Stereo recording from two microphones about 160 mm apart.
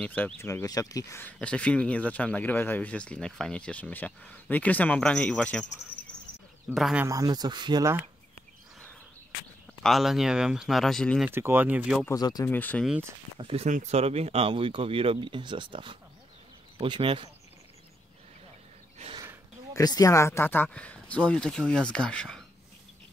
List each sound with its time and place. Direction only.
0.0 s speech: 10° left (ahead or behind)
1.2 s speech: 5° left (ahead or behind)
6.7 s speech: 5° right (ahead or behind)
7.1 s speech: 20° right (ahead or behind)
9.8 s speech: centre (ahead or behind)
11.2 s speech: 15° right (ahead or behind)
12.1 s speech: 25° left (ahead or behind)
12.4 s speech: 10° left (ahead or behind)
13.4 s speech: 35° right (ahead or behind)
13.7 s speech: 45° right (ahead or behind); by 17.3 s 30° right (ahead or behind)
19.0 s speech: 40° right (ahead or behind)
19.7 s speech: 25° left (ahead or behind); by 22.4 s 5° left (ahead or behind)